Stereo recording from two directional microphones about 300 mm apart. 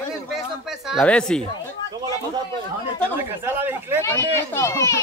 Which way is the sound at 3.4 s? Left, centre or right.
Centre.